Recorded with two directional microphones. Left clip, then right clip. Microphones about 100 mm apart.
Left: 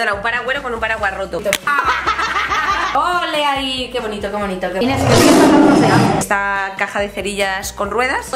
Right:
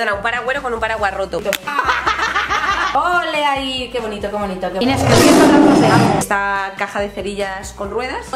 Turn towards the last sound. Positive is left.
turn(degrees=0)  # may be behind; listen again after turning